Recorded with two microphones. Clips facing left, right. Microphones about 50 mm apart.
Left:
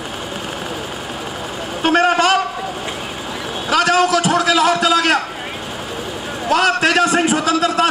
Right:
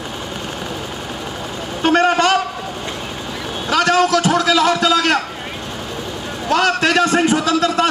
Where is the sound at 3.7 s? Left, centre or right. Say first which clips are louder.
Even; centre.